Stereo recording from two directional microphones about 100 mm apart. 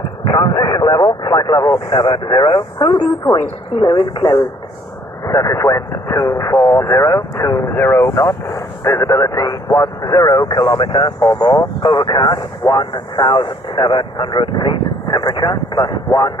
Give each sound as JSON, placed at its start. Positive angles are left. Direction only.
{"t": 0.3, "sound": "vehicle", "side_deg": 40}
{"t": 2.0, "sound": "speech", "side_deg": 50}
{"t": 2.9, "sound": "speech", "side_deg": 30}